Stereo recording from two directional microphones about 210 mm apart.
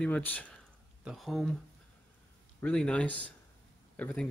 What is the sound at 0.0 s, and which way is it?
Speech, 5° left (ahead or behind).